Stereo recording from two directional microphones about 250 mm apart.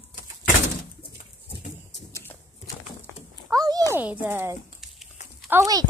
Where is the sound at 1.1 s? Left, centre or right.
Left.